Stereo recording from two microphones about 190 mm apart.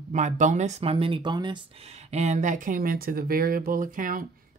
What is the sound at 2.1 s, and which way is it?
Speech, 40° right (ahead or behind).